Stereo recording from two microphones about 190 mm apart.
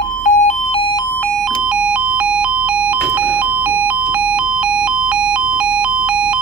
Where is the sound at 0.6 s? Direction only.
25° left (ahead or behind).